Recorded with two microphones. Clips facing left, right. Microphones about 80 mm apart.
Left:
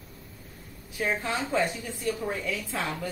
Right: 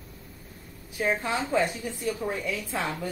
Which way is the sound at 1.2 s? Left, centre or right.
Centre.